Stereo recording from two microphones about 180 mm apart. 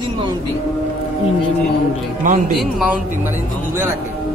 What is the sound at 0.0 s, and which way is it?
Vehicle, 25° right (ahead or behind).